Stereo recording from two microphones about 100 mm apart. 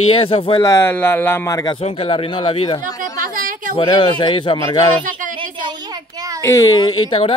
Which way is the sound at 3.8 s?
50° left (ahead or behind).